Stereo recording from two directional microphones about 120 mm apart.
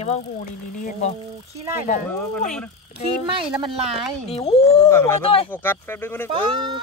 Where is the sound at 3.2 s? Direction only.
45° right (ahead or behind).